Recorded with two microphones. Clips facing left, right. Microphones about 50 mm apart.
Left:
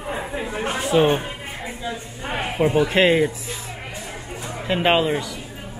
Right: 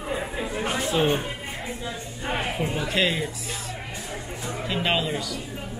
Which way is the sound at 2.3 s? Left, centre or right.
Left.